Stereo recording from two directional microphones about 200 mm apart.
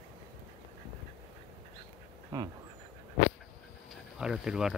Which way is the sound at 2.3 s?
15° right (ahead or behind).